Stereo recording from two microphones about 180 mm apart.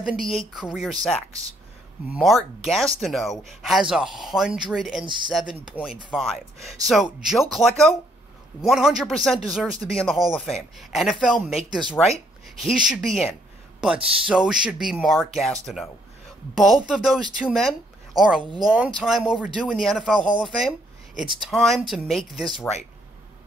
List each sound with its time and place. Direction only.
0.0 s speech: centre (ahead or behind)
2.1 s speech: centre (ahead or behind)
5.0 s speech: 25° right (ahead or behind)
5.3 s speech: 5° right (ahead or behind)